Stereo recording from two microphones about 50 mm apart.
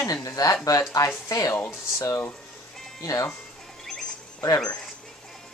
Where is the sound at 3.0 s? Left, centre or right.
Left.